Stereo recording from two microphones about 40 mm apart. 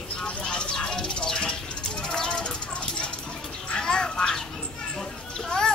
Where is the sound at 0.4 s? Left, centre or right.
Left.